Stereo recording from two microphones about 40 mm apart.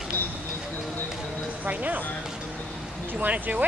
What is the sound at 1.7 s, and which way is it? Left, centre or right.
Speech, right.